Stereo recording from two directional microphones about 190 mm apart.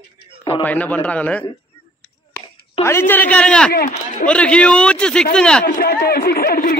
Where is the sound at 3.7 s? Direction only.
55° left (ahead or behind).